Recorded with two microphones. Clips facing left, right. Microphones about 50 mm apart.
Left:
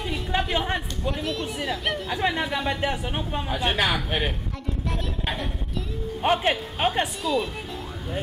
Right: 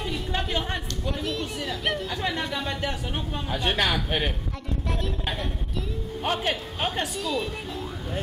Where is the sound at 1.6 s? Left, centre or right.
Centre.